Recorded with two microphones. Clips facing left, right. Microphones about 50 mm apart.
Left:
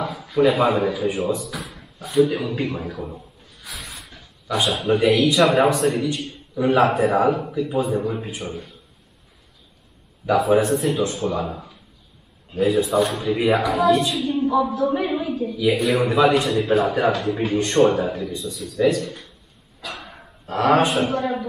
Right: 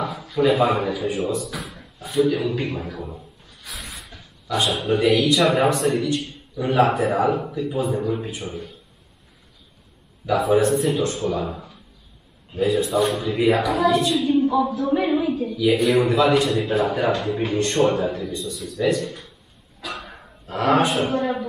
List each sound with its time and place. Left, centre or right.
0.0 s a sound: centre
0.5 s speech: centre
2.3 s a sound: centre
4.6 s speech: centre
6.5 s a man's voice: centre
6.8 s speech: centre
10.2 s speech: centre
13.4 s speech: left
13.7 s speech: centre
15.1 s a woman's voice: centre
15.4 s speech: centre
15.7 s speech: centre
16.2 s speech: centre
19.8 s gasp: centre